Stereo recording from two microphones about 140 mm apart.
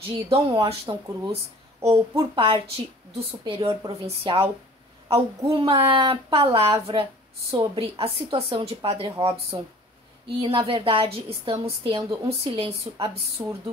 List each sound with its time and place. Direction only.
0.0 s a woman's voice: 40° right (ahead or behind)
13.4 s speech: 25° right (ahead or behind)